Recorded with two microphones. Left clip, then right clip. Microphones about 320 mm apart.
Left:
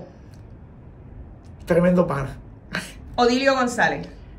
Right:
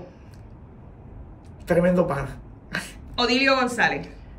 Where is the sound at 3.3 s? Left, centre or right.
Centre.